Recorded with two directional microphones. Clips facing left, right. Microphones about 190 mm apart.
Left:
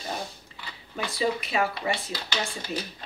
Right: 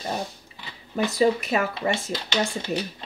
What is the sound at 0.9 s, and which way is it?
Speech, 45° right (ahead or behind).